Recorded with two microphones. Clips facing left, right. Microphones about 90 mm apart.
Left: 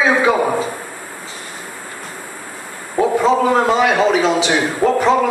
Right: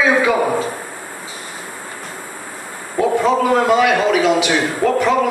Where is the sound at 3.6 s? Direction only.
30° left (ahead or behind).